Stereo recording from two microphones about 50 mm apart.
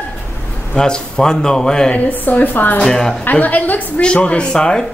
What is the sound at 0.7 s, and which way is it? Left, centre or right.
A man's voice, centre.